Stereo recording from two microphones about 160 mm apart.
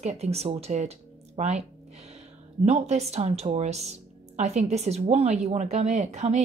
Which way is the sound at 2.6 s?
40° right (ahead or behind).